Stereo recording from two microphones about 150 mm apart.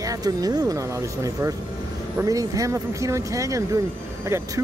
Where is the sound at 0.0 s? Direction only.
25° right (ahead or behind).